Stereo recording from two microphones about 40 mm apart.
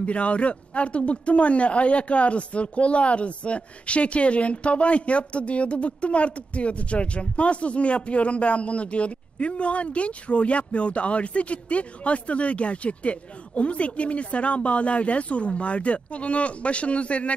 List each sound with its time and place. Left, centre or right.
0.0 s speech: left